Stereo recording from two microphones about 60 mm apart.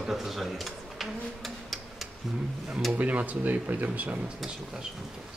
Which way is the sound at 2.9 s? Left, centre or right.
Right.